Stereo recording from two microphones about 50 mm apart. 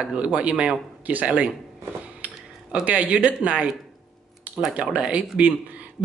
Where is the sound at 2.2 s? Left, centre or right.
Right.